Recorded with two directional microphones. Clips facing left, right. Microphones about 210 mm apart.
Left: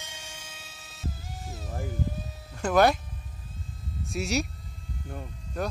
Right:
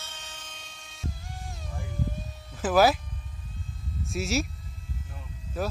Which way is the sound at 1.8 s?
Centre (ahead or behind).